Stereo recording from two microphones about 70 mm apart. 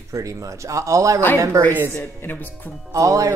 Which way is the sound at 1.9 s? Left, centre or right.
Left.